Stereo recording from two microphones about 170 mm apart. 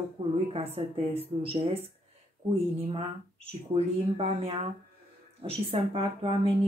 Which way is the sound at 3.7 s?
35° right (ahead or behind).